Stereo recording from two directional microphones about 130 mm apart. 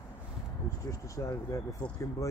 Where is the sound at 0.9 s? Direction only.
25° left (ahead or behind).